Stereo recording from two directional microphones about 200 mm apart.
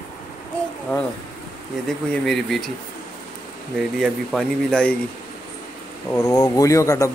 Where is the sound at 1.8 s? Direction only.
5° left (ahead or behind).